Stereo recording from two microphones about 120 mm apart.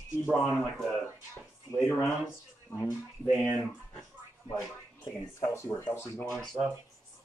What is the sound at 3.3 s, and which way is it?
Speech, centre (ahead or behind).